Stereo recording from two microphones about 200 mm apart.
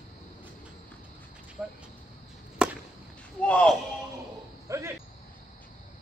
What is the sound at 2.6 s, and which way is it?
Chop, 5° right (ahead or behind).